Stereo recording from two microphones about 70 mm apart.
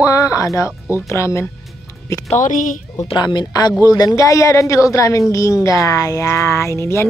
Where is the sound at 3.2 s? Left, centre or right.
Left.